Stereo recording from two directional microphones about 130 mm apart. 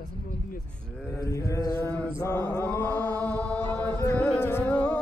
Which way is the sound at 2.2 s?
20° left (ahead or behind).